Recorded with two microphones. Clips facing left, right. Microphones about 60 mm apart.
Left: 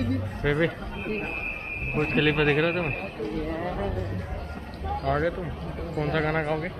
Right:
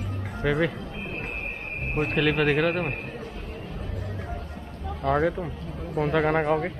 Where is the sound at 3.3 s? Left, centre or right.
Left.